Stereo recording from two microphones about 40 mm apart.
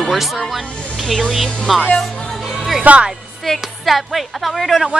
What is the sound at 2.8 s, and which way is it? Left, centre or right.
Speech, right.